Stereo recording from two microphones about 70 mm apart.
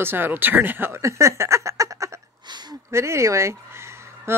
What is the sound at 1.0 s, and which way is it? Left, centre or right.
Speech, right.